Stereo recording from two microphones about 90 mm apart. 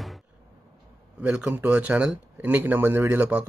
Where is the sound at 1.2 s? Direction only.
15° right (ahead or behind).